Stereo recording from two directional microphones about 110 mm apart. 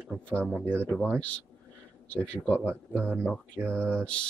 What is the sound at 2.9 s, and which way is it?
Speech, 15° right (ahead or behind).